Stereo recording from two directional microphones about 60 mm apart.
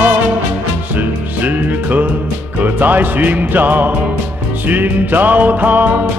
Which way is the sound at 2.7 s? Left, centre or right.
Right.